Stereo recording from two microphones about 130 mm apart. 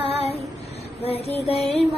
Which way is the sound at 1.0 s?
50° left (ahead or behind).